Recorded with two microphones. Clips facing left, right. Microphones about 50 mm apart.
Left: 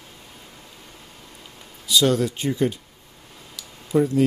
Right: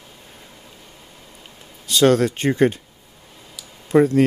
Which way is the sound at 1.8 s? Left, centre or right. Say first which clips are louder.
Right 4 dB; right.